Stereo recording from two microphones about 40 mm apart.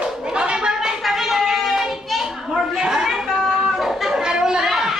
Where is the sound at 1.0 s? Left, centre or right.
Centre.